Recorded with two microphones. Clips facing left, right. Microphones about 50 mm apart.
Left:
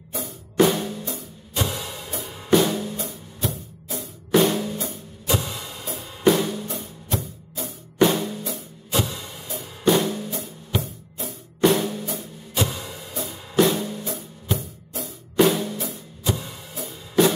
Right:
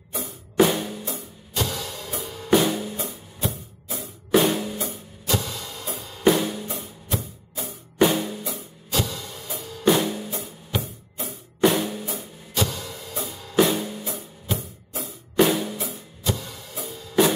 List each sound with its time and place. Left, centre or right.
0.1 s music: centre
1.5 s music: centre
2.2 s drum kit: centre
2.5 s drum kit: centre
3.1 s music: centre
5.4 s music: centre
6.2 s music: centre
9.0 s music: centre
9.8 s music: centre
12.7 s music: centre
13.3 s drum kit: centre
13.6 s music: centre
16.3 s music: centre
17.2 s music: centre